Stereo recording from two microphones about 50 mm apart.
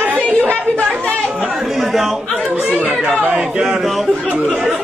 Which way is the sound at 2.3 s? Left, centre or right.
Right.